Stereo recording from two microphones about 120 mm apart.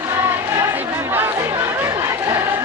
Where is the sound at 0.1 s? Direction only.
20° right (ahead or behind).